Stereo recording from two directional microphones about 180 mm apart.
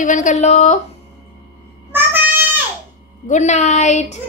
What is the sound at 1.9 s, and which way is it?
Meow, 10° right (ahead or behind).